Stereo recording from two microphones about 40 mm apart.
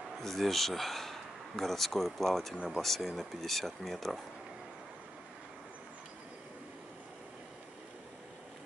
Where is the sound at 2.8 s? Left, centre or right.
Centre.